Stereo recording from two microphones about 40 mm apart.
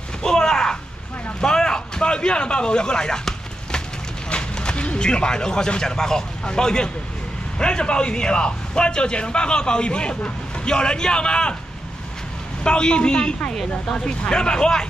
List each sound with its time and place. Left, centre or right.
0.2 s a sound: centre
1.4 s speech: centre
4.3 s a man's voice: left
12.6 s a man's voice: left